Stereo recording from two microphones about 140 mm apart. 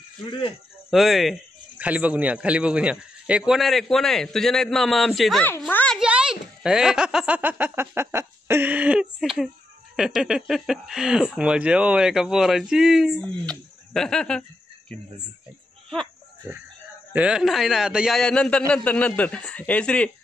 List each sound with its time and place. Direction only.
0.3 s speech: 35° left (ahead or behind)
0.8 s speech: centre (ahead or behind)
5.7 s a sound: 10° left (ahead or behind)
5.9 s a child's voice: 5° right (ahead or behind)
17.1 s speech: 5° right (ahead or behind); by 20.1 s 10° left (ahead or behind)